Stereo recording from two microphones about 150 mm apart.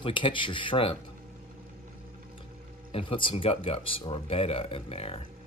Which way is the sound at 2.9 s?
35° left (ahead or behind).